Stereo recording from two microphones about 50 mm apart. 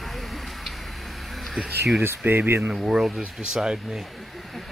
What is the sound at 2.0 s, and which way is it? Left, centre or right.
Speech, right.